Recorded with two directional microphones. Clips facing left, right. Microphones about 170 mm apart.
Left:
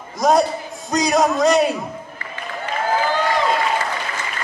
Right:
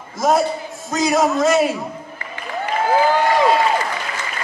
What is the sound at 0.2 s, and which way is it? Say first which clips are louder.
A man's voice: left 1 dB; centre (ahead or behind).